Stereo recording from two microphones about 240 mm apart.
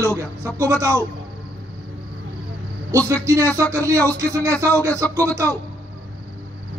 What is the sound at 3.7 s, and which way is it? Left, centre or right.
Speech, centre.